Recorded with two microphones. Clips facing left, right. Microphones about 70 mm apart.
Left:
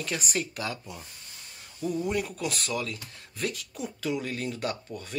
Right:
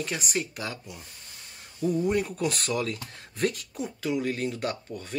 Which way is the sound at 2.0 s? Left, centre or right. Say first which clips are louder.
Right 4 dB; right.